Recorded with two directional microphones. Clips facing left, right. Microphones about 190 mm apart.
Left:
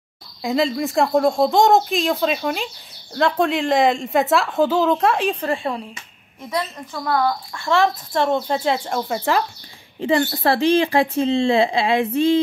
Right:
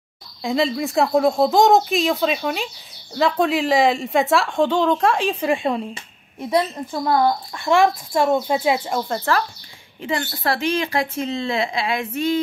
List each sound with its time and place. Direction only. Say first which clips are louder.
0.4 s speech: left 1 dB; centre (ahead or behind)
5.4 s speech: right 3 dB; 15° right (ahead or behind)
9.3 s speech: left 1 dB; 20° left (ahead or behind)
9.9 s a woman's voice: left 6 dB; 30° left (ahead or behind)